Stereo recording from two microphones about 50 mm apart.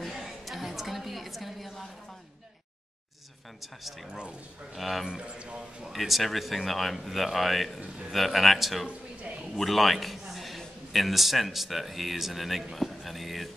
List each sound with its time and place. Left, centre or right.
0.0 s a sound: centre
3.6 s speech: centre
5.0 s a man's voice: centre
5.9 s a man's voice: centre